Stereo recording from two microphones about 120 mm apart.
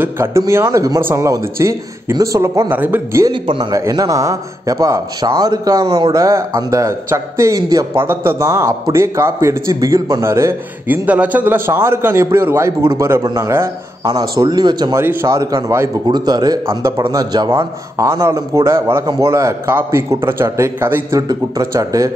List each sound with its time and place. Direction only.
0.0 s a man's voice: 20° right (ahead or behind)
3.3 s speech: 45° right (ahead or behind)
3.7 s a man's voice: 30° right (ahead or behind)
11.1 s a man's voice: 10° right (ahead or behind); by 15.0 s 35° right (ahead or behind)
15.0 s a man's voice: 20° right (ahead or behind)
16.1 s speech: 35° right (ahead or behind)
16.6 s a man's voice: 20° right (ahead or behind)
21.2 s a man's voice: 30° right (ahead or behind)